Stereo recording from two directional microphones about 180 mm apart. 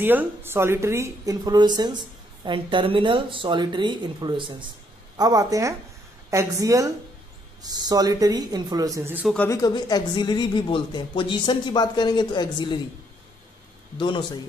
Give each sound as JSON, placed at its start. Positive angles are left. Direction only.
{"t": 0.0, "sound": "a woman's voice", "side_deg": -10}
{"t": 9.2, "sound": "speech", "side_deg": 5}
{"t": 9.5, "sound": "speech", "side_deg": 20}
{"t": 13.9, "sound": "speech", "side_deg": 25}